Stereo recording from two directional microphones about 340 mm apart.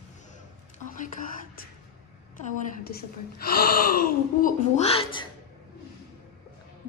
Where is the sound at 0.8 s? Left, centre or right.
Left.